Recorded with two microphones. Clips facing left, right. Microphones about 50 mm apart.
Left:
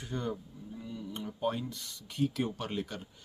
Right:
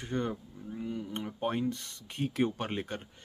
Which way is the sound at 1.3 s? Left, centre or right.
Right.